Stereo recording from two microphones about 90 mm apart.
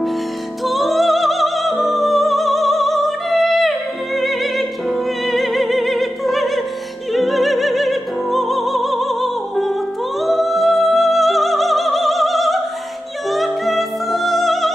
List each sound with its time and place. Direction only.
0.7 s music: centre (ahead or behind)